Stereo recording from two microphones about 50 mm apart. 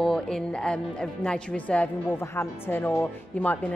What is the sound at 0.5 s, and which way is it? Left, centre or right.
A woman's voice, centre.